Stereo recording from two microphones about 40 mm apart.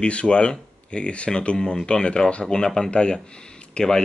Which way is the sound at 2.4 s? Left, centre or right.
Centre.